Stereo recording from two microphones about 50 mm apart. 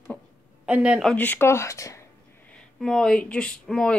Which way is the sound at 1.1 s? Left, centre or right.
Left.